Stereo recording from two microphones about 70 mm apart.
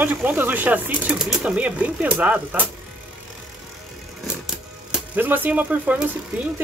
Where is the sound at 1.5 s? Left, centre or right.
Centre.